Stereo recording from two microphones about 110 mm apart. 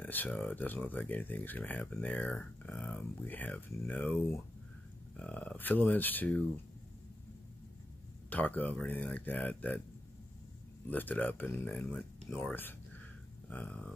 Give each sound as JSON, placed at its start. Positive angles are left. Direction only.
{"t": 0.0, "sound": "speech", "side_deg": 15}
{"t": 8.3, "sound": "speech", "side_deg": 15}
{"t": 10.9, "sound": "speech", "side_deg": 15}
{"t": 12.4, "sound": "a sound", "side_deg": 15}
{"t": 13.5, "sound": "speech", "side_deg": 15}